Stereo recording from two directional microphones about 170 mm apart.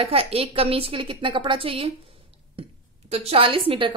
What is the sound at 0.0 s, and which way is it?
A woman's voice, 35° right (ahead or behind).